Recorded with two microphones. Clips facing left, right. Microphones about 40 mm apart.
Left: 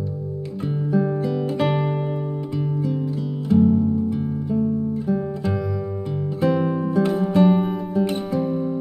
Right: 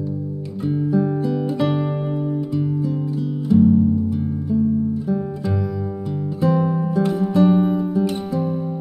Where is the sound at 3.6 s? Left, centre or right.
Centre.